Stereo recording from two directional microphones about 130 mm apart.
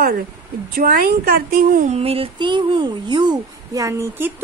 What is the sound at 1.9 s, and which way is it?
Speech, 50° right (ahead or behind).